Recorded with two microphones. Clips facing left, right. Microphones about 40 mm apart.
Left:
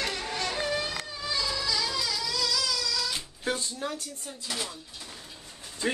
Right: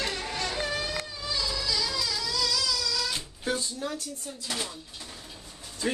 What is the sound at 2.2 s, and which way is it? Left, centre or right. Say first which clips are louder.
Music: right 1 dB; centre.